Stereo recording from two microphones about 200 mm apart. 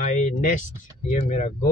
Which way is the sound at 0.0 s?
40° left (ahead or behind).